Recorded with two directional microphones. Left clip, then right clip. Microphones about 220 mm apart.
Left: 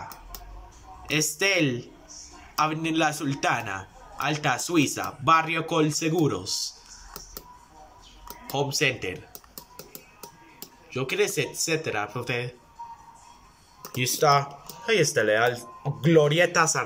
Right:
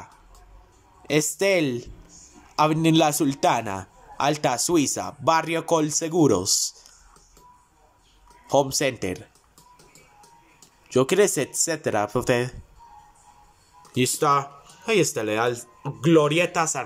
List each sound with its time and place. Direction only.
1.0 s a man's voice: 20° right (ahead or behind)
8.5 s a man's voice: 30° right (ahead or behind)
10.9 s speech: 30° right (ahead or behind)
13.9 s a man's voice: 20° right (ahead or behind)